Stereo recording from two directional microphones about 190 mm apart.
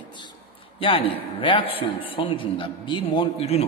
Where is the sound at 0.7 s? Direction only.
30° left (ahead or behind).